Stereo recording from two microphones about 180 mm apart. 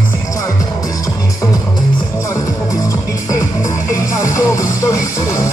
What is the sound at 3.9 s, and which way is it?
Music, 15° left (ahead or behind).